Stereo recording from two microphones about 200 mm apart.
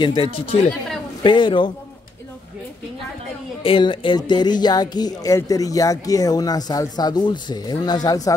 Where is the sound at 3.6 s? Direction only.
25° left (ahead or behind).